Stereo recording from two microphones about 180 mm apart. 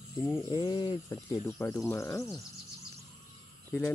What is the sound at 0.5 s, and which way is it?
Speech, 25° left (ahead or behind).